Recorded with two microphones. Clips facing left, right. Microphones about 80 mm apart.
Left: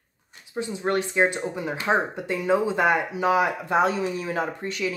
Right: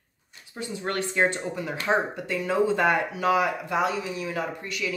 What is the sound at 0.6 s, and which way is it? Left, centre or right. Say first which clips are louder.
Speech: left 5 dB; left.